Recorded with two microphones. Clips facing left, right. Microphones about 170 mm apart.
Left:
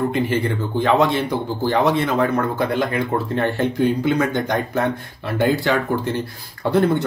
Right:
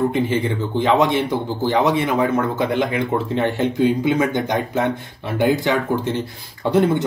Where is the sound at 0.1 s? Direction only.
20° right (ahead or behind).